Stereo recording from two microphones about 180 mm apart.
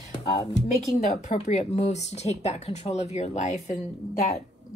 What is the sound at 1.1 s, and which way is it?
Speech, 40° left (ahead or behind).